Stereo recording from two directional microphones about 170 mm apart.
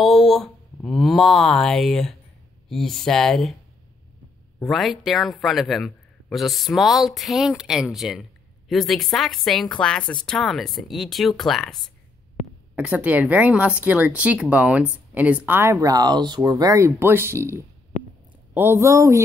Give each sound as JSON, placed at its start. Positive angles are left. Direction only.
{"t": 0.0, "sound": "a man's voice", "side_deg": 0}
{"t": 4.6, "sound": "a man's voice", "side_deg": 0}
{"t": 12.4, "sound": "a sound", "side_deg": 40}
{"t": 12.7, "sound": "speech", "side_deg": -10}
{"t": 17.9, "sound": "a sound", "side_deg": 40}
{"t": 18.5, "sound": "speech", "side_deg": -15}